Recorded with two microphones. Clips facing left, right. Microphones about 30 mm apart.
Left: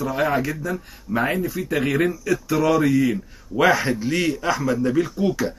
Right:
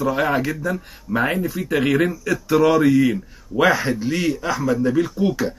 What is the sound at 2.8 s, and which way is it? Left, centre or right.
Speech, centre.